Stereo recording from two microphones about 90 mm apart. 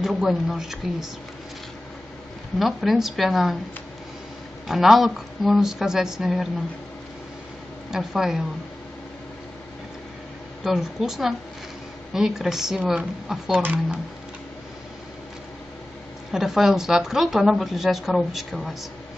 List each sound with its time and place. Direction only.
0.0 s speech: 5° right (ahead or behind)
2.6 s speech: centre (ahead or behind)
4.6 s speech: 5° right (ahead or behind)
7.9 s speech: 5° right (ahead or behind)
10.6 s speech: 5° right (ahead or behind)
13.6 s speech: 20° right (ahead or behind)
16.3 s speech: 5° right (ahead or behind)